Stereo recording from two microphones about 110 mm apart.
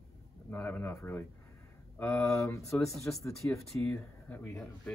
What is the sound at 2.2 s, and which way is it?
Speech, 25° left (ahead or behind).